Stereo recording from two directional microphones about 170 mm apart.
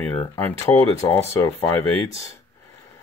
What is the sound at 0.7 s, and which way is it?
Speech, 20° left (ahead or behind).